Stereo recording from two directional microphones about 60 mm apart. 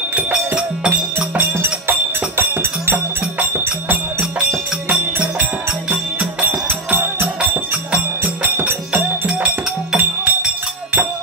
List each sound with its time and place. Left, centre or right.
0.1 s music: centre
1.6 s music: right
4.8 s music: right